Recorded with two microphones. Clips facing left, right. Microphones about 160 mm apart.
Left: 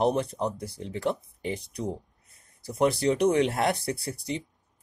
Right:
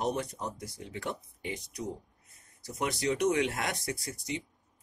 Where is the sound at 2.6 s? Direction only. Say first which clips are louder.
Left 8 dB; 30° left (ahead or behind).